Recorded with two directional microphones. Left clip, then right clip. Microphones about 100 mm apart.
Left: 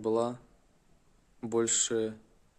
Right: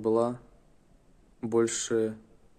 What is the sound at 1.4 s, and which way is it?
Speech, 10° left (ahead or behind).